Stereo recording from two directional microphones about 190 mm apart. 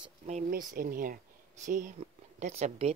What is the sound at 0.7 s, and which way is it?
A woman's voice, 50° right (ahead or behind).